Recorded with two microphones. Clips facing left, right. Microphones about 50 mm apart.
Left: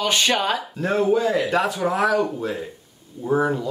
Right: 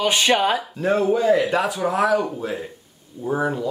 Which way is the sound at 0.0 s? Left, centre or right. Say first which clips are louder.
Right 2 dB; centre.